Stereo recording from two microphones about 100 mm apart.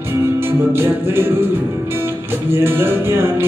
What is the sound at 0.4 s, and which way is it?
Music, 25° right (ahead or behind).